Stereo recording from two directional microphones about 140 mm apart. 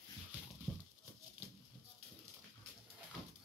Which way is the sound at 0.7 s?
Centre (ahead or behind).